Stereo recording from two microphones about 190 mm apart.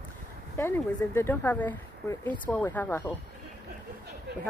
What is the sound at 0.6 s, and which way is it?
Speech, 10° left (ahead or behind).